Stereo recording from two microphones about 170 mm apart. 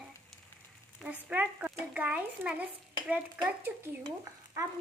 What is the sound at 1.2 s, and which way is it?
A child's voice, 10° right (ahead or behind).